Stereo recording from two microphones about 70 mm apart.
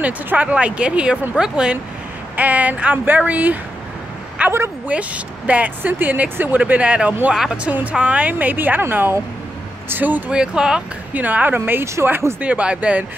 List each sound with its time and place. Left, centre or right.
0.0 s speech: right
2.3 s speech: right
7.3 s speech: centre
7.9 s speech: centre
10.3 s speech: centre
11.1 s speech: right
12.4 s speech: centre